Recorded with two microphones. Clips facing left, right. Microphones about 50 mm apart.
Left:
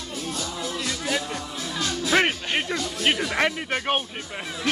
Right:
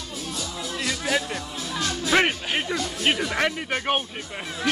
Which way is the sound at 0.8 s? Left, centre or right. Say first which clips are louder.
Right 4 dB; right.